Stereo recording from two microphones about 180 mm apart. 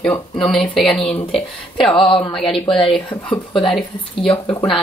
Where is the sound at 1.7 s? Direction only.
30° left (ahead or behind).